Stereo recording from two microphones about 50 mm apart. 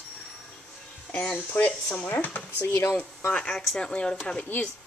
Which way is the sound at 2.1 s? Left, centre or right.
Left.